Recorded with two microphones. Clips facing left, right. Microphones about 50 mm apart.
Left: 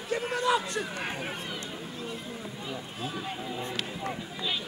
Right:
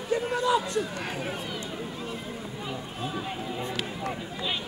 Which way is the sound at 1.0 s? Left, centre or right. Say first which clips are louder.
Right 2 dB; centre.